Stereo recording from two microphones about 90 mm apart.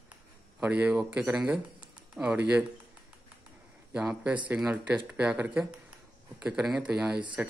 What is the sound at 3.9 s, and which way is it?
Speech, 15° right (ahead or behind).